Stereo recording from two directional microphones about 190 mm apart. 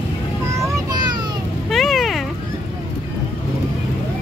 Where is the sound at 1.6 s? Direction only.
Centre (ahead or behind).